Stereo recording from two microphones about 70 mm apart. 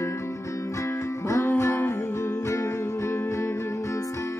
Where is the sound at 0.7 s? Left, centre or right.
Left.